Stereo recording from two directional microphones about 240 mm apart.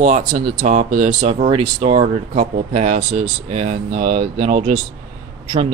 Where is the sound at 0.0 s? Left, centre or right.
Right.